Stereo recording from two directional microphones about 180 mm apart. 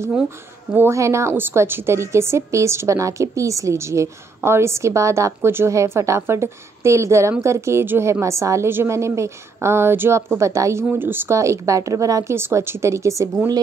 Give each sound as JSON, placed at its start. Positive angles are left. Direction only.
{"t": 0.7, "sound": "a woman's voice", "side_deg": -15}